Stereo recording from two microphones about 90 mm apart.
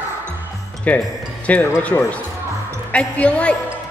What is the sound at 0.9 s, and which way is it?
Speech, 15° left (ahead or behind).